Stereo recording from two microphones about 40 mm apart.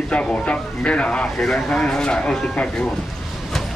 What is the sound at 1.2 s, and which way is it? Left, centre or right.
Speech, centre.